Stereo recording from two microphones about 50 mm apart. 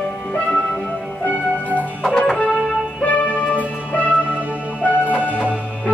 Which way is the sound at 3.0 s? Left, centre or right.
Left.